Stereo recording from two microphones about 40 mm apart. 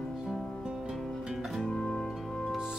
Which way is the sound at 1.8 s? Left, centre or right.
Centre.